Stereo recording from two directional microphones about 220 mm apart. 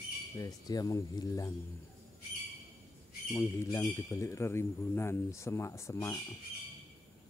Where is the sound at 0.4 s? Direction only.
15° left (ahead or behind).